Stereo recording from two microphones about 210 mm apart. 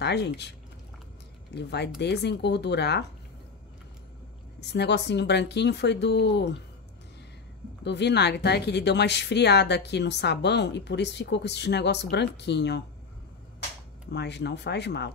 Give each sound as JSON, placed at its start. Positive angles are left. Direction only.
{"t": 0.0, "sound": "speech", "side_deg": 55}
{"t": 4.6, "sound": "speech", "side_deg": 55}
{"t": 7.8, "sound": "speech", "side_deg": 55}
{"t": 14.1, "sound": "speech", "side_deg": 55}